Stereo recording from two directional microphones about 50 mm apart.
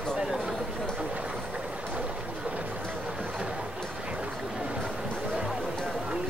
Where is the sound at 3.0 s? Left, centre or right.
Centre.